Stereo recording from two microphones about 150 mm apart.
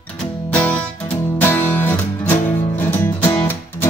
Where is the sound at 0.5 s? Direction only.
10° left (ahead or behind).